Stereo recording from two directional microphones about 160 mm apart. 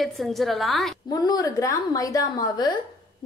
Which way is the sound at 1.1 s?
25° left (ahead or behind).